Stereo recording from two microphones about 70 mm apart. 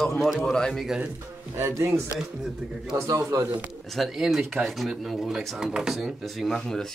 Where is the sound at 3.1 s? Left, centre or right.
Right.